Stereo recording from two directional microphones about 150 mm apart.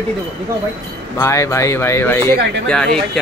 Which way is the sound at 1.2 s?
20° left (ahead or behind).